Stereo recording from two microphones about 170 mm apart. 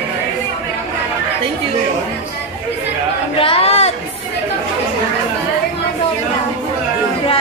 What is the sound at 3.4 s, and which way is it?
Chatter, 35° left (ahead or behind).